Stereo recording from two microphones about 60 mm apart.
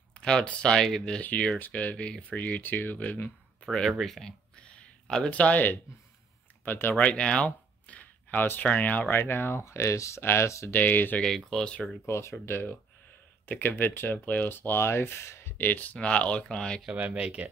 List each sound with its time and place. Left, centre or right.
0.1 s speech: centre
1.6 s speech: left
4.0 s speech: centre
4.6 s a sound: centre
5.3 s speech: left
7.0 s speech: centre
9.1 s speech: left
10.7 s speech: left
11.2 s speech: centre
12.1 s speech: left
15.5 s speech: left; by 16.8 s centre
16.9 s speech: centre